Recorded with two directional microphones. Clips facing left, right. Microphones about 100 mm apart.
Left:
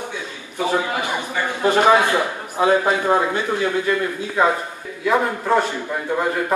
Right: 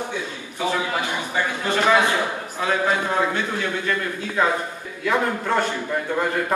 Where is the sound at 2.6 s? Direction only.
25° left (ahead or behind).